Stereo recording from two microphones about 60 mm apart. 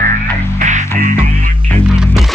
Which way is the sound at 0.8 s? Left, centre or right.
Left.